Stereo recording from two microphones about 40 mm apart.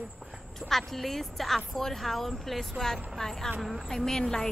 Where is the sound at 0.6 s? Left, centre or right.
Centre.